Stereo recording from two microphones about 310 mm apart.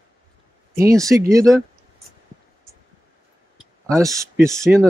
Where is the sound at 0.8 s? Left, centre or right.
Centre.